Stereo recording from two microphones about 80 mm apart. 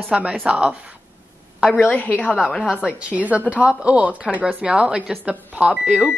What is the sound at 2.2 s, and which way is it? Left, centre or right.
Speech, centre.